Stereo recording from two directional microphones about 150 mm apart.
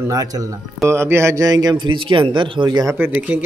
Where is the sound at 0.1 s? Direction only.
25° right (ahead or behind).